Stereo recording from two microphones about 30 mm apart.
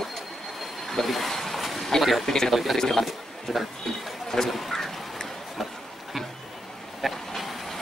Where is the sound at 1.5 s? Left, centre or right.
Centre.